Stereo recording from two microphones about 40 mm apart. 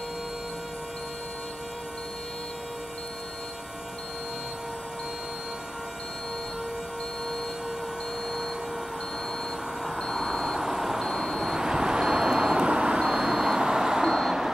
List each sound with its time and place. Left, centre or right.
9.9 s vehicle: centre
11.5 s vehicle: centre